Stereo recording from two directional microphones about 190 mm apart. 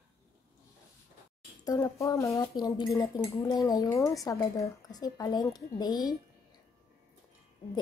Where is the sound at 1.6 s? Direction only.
20° left (ahead or behind).